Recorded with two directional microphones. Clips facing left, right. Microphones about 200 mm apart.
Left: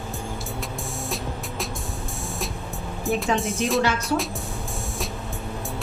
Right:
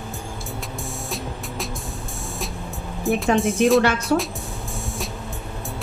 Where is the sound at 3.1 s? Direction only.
Centre (ahead or behind).